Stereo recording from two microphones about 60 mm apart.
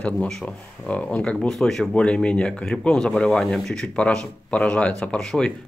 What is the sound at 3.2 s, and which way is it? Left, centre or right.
Speech, centre.